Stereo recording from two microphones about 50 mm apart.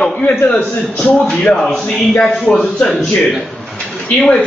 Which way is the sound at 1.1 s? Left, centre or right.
Centre.